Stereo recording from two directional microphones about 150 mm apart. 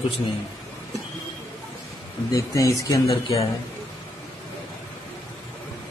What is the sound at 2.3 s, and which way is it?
Speech, 20° left (ahead or behind).